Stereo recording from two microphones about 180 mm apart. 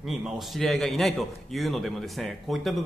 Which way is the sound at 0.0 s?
Centre (ahead or behind).